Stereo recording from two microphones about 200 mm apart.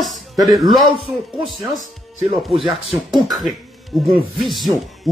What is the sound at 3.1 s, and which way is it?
Speech, centre (ahead or behind).